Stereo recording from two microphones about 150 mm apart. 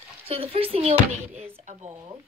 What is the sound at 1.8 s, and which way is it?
Speech, 20° right (ahead or behind).